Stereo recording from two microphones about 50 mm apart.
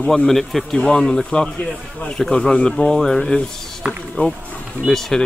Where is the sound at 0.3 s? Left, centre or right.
Centre.